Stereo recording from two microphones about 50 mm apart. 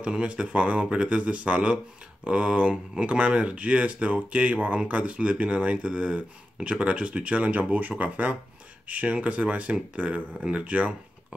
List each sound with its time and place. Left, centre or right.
0.0 s speech: centre